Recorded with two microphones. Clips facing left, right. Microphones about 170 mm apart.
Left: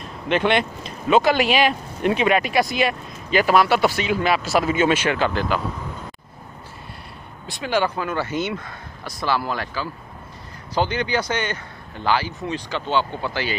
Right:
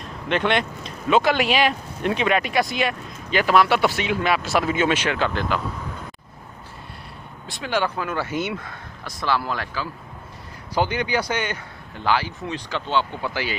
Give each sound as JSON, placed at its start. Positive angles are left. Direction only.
{"t": 0.3, "sound": "speech", "side_deg": 5}
{"t": 7.4, "sound": "speech", "side_deg": 0}
{"t": 10.7, "sound": "speech", "side_deg": -10}